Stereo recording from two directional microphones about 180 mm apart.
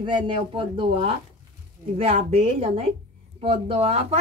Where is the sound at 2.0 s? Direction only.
35° right (ahead or behind).